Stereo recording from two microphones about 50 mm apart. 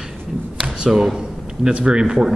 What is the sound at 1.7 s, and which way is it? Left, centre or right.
Speech, right.